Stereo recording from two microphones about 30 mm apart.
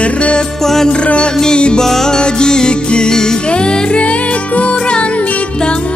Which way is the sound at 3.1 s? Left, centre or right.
Centre.